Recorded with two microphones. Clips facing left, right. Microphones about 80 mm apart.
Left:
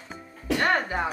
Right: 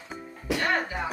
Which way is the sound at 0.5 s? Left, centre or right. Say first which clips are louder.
Left 3 dB; left.